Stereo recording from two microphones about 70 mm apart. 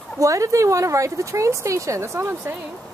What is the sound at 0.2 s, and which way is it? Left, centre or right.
Speech, right.